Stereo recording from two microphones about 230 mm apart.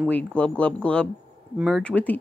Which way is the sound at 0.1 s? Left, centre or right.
Centre.